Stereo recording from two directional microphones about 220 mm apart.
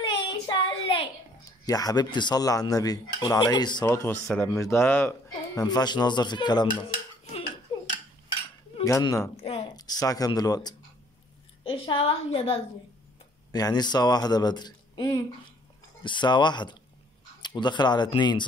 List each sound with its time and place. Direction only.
0.0 s a child's voice: 25° left (ahead or behind)
8.7 s speech: 20° left (ahead or behind)
9.4 s a woman's voice: 25° left (ahead or behind)